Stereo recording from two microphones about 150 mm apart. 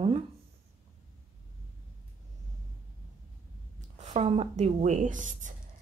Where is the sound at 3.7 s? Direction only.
50° right (ahead or behind).